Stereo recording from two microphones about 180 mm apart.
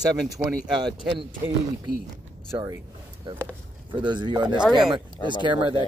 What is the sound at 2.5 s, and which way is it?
Speech, 20° right (ahead or behind).